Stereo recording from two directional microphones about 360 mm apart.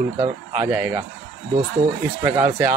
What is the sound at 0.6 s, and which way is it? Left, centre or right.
Speech, centre.